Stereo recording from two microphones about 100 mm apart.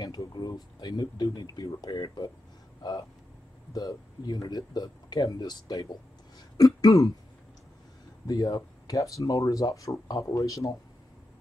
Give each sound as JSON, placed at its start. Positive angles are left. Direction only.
{"t": 0.0, "sound": "speech", "side_deg": 45}
{"t": 8.3, "sound": "speech", "side_deg": 40}